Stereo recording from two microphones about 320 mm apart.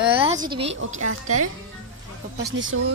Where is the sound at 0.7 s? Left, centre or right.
Right.